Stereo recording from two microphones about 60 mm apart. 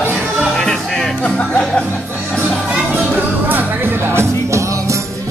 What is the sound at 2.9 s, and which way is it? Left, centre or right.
Music, right.